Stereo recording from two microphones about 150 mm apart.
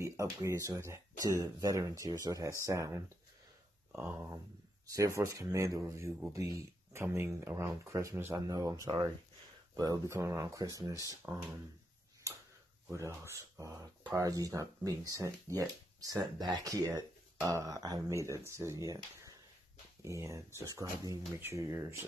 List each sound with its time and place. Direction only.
0.0 s speech: 20° right (ahead or behind)
12.9 s speech: 20° right (ahead or behind)